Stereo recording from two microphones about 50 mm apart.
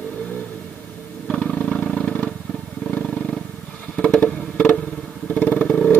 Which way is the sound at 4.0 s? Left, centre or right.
Left.